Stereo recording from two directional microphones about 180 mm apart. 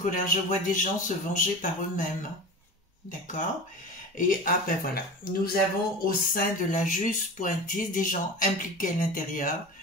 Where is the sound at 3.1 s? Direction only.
45° left (ahead or behind).